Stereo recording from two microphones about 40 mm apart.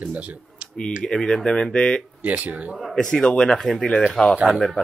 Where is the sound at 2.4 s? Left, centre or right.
Right.